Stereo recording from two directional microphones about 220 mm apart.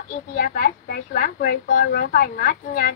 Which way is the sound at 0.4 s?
40° left (ahead or behind).